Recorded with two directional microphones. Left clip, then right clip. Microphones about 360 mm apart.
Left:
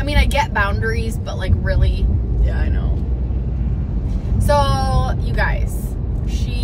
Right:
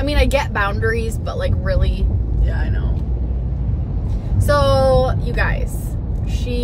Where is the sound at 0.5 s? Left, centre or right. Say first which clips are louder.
Right 1 dB; centre.